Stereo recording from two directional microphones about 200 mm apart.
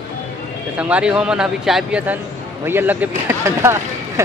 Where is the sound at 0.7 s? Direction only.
5° right (ahead or behind).